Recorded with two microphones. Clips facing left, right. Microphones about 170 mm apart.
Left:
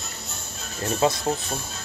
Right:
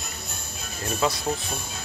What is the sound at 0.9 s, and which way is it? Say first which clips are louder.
Speech: left 3 dB; 25° left (ahead or behind).